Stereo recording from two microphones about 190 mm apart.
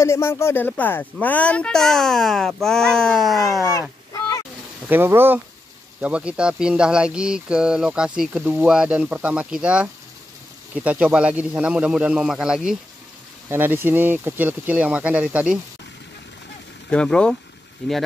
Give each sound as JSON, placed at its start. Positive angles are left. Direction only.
{"t": 0.0, "sound": "speech", "side_deg": 15}
{"t": 4.1, "sound": "a sound", "side_deg": 20}
{"t": 4.8, "sound": "speech", "side_deg": -10}
{"t": 16.9, "sound": "speech", "side_deg": 5}